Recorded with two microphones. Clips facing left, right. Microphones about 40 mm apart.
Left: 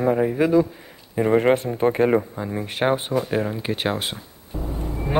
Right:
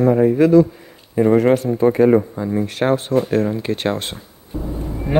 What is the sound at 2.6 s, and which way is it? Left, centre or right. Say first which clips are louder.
Speech: right 2 dB; centre.